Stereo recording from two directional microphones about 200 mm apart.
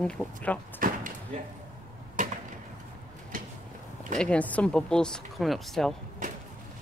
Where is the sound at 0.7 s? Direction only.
40° right (ahead or behind).